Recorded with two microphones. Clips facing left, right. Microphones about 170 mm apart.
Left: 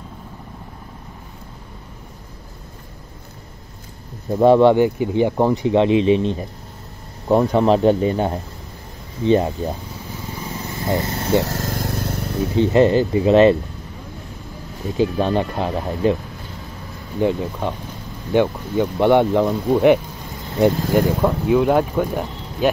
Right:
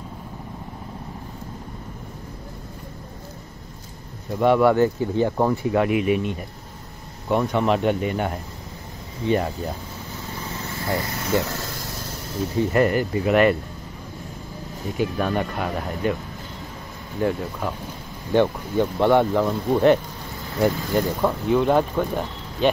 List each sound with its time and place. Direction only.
4.3 s speech: 30° left (ahead or behind)
9.2 s a sound: 25° left (ahead or behind)
11.4 s vehicle: 45° left (ahead or behind)
12.5 s speech: 25° left (ahead or behind)
15.0 s speech: 30° left (ahead or behind)
17.2 s speech: 20° left (ahead or behind)
21.1 s speech: 10° left (ahead or behind)